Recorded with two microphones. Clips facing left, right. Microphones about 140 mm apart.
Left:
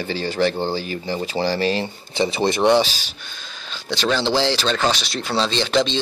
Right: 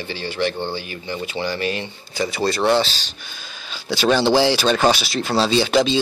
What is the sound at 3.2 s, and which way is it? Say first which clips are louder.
Speech: even; 5° right (ahead or behind).